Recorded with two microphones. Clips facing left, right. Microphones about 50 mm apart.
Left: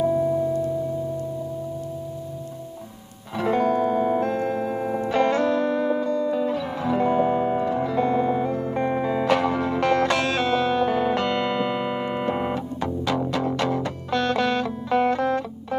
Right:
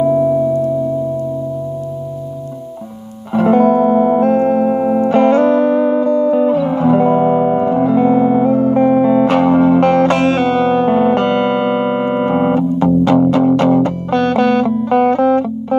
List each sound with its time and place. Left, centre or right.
0.0 s music: right
3.3 s music: right